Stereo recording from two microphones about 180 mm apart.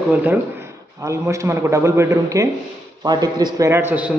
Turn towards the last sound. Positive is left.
turn(degrees=-10)  # may be behind; listen again after turning